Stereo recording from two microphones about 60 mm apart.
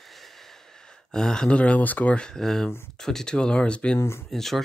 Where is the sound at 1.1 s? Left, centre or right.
Centre; by 2.1 s left.